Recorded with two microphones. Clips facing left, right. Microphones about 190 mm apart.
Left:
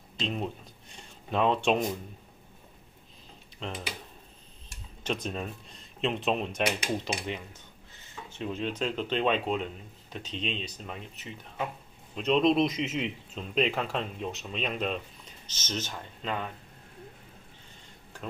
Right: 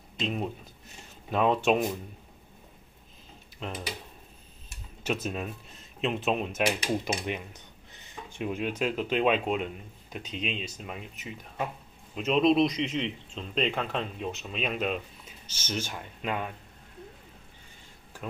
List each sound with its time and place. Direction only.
0.2 s speech: 5° right (ahead or behind)
3.5 s speech: 5° right (ahead or behind)
7.1 s a man's voice: 15° right (ahead or behind)